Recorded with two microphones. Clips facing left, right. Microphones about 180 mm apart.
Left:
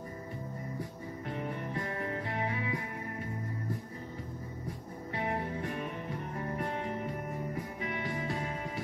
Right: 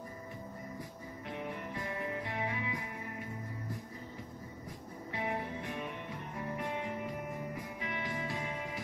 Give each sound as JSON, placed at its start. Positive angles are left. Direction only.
{"t": 2.2, "sound": "music", "side_deg": 35}
{"t": 5.2, "sound": "music", "side_deg": 35}